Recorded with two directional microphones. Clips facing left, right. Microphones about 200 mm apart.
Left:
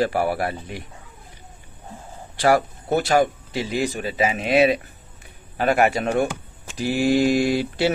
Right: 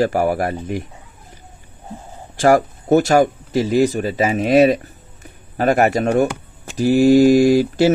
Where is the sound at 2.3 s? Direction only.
45° right (ahead or behind).